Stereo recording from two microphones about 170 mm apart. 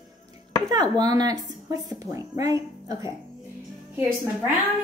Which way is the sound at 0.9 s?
25° right (ahead or behind).